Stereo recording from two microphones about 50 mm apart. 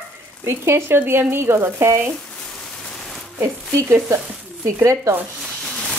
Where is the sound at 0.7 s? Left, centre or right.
Right.